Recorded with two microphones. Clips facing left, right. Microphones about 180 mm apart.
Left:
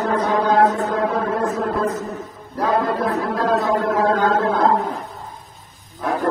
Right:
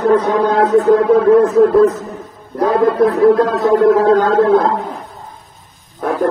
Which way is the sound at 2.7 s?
60° right (ahead or behind).